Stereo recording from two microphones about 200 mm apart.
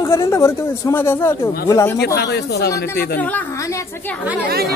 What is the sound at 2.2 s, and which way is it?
Speech, 55° left (ahead or behind).